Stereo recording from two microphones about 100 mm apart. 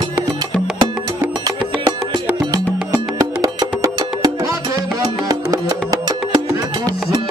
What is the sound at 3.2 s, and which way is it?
Music, 35° right (ahead or behind).